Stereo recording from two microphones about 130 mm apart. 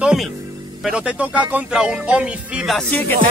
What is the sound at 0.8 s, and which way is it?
Music, 10° right (ahead or behind).